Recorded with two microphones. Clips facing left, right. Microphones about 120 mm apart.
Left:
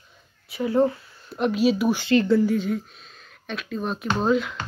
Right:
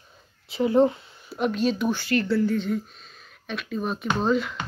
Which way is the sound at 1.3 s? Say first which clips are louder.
Left 3 dB; centre (ahead or behind).